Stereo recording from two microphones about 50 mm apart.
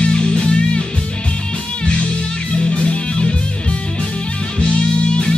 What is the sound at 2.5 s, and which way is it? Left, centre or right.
Music, centre.